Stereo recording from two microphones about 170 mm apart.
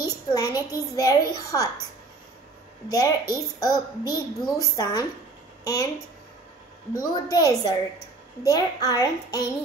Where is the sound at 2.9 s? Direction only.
20° left (ahead or behind).